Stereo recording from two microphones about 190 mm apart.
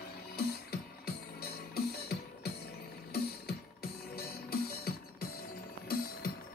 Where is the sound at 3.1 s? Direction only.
55° left (ahead or behind).